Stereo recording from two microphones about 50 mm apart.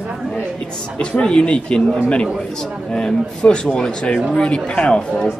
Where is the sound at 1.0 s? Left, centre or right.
Centre.